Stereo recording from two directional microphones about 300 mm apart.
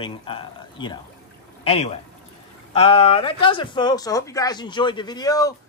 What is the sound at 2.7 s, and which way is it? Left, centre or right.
Speech, centre.